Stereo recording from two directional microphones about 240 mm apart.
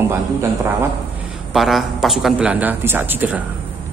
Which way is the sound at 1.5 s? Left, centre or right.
Centre.